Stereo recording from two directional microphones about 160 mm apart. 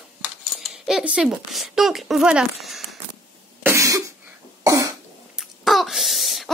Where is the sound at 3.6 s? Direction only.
15° right (ahead or behind).